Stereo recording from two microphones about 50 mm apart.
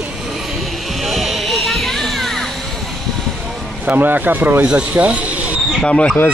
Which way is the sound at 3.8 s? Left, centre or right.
Right.